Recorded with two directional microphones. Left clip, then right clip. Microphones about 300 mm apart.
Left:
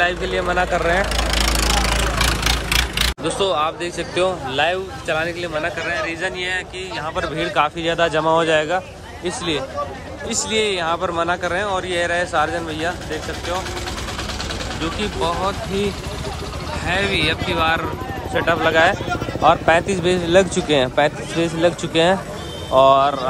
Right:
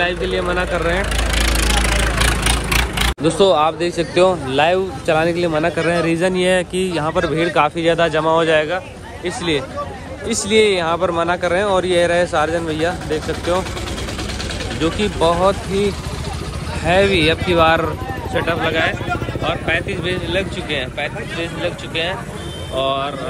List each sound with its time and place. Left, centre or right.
0.0 s speech: centre
1.1 s vehicle: left
2.4 s vehicle: centre
3.3 s a man's voice: centre
11.8 s speech: left
12.1 s a man's voice: centre
14.8 s speech: centre
20.7 s speech: left
22.8 s a man's voice: centre